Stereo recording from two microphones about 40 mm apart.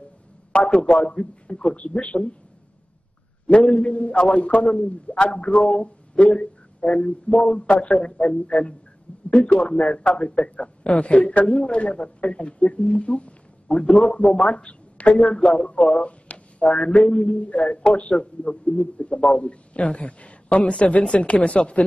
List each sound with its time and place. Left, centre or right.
0.5 s speech: left
3.4 s speech: left
7.9 s speech: centre
13.8 s speech: centre